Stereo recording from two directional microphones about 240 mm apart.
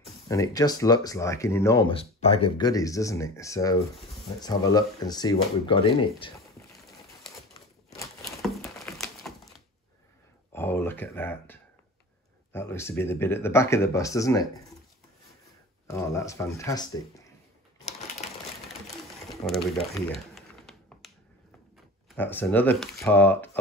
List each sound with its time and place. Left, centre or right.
0.3 s speech: centre
8.7 s a sound: centre
10.5 s a sound: centre
12.5 s speech: centre
15.9 s speech: centre
19.2 s pigeon: centre
19.9 s typing: centre
22.1 s speech: centre